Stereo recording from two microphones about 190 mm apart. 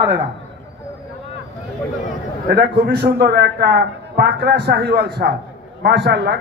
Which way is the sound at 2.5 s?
55° right (ahead or behind).